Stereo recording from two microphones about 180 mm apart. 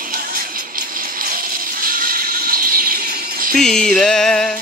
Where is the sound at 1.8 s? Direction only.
50° right (ahead or behind).